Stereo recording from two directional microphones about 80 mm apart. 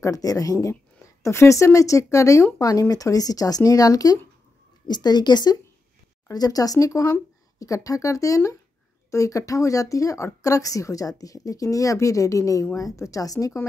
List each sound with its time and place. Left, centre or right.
0.0 s speech: left
4.8 s a woman's voice: left
6.2 s speech: left